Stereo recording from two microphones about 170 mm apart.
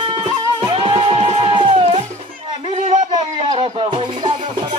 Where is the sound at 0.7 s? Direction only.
30° right (ahead or behind).